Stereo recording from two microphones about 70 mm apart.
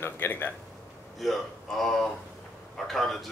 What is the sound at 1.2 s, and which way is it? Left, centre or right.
Speech, centre.